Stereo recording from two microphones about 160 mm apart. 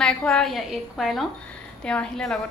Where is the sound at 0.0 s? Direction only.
5° left (ahead or behind).